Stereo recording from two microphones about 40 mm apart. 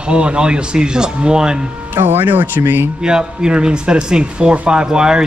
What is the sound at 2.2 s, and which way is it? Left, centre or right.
Speech, right.